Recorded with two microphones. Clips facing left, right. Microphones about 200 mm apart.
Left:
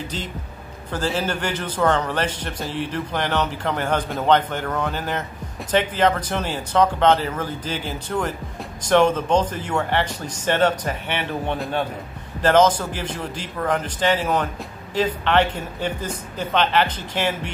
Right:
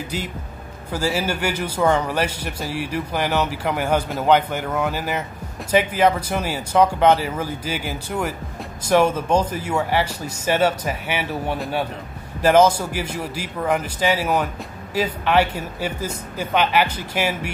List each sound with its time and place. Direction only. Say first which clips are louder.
0.9 s a man's voice: right 1 dB; 10° right (ahead or behind)